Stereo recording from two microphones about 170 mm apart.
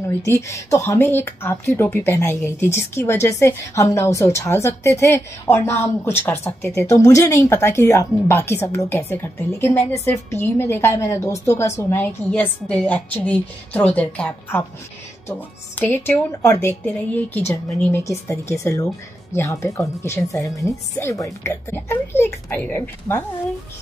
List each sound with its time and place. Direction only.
0.2 s speech: 20° left (ahead or behind)